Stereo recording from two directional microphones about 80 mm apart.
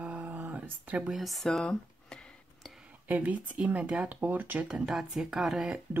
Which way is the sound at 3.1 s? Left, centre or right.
Centre.